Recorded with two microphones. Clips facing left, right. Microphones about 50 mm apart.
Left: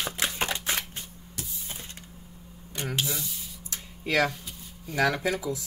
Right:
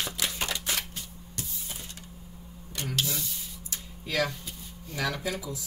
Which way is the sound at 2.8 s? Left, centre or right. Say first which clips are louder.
Left 1 dB; left.